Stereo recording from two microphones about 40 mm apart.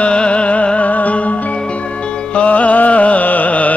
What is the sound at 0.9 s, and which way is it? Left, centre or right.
Music, left.